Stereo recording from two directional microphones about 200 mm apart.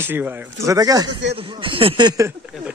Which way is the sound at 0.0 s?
10° right (ahead or behind).